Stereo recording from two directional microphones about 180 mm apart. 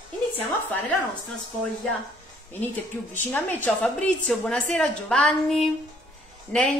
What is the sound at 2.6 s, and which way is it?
A woman's voice, 10° left (ahead or behind).